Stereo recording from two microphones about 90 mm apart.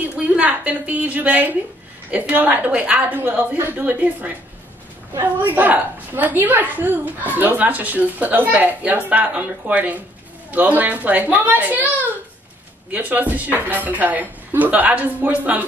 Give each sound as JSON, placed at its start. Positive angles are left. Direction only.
{"t": 0.0, "sound": "a woman's voice", "side_deg": -15}
{"t": 12.9, "sound": "a woman's voice", "side_deg": -20}